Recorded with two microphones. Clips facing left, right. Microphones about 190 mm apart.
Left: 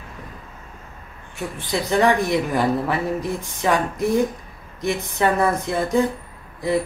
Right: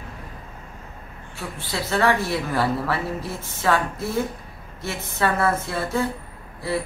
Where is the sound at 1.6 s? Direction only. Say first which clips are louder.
Left 4 dB; 15° left (ahead or behind).